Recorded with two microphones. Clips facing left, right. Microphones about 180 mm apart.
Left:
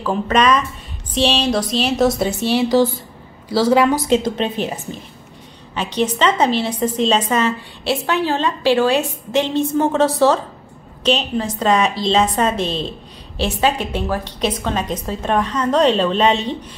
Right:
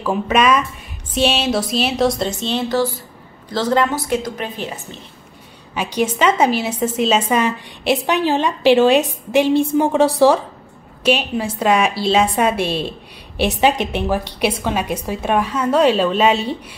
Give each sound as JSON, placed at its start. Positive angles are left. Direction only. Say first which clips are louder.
{"t": 0.0, "sound": "a woman's voice", "louder": "even", "side_deg": -10}
{"t": 4.1, "sound": "a woman's voice", "louder": "left 5 dB", "side_deg": 25}
{"t": 5.8, "sound": "a woman's voice", "louder": "even", "side_deg": -10}